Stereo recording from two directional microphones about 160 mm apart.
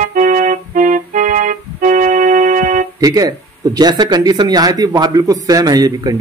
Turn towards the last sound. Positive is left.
turn(degrees=-25)  # may be behind; listen again after turning